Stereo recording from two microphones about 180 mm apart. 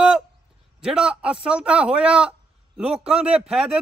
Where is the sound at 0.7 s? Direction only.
5° right (ahead or behind).